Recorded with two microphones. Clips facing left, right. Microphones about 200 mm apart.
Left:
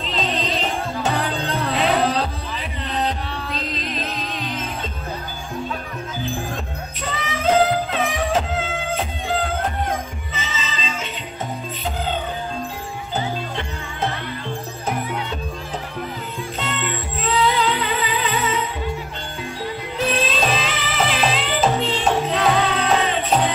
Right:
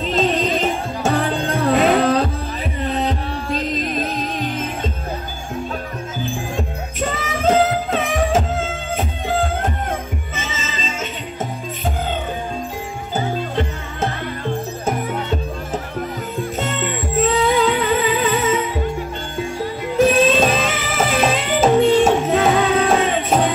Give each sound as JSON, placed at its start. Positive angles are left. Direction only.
{"t": 0.0, "sound": "music", "side_deg": -45}
{"t": 7.0, "sound": "music", "side_deg": -45}
{"t": 10.3, "sound": "music", "side_deg": -45}
{"t": 14.0, "sound": "music", "side_deg": -45}
{"t": 16.5, "sound": "music", "side_deg": -45}
{"t": 20.0, "sound": "music", "side_deg": -50}